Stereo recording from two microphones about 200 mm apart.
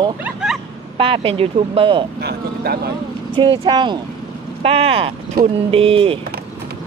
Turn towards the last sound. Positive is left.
turn(degrees=-25)  # may be behind; listen again after turning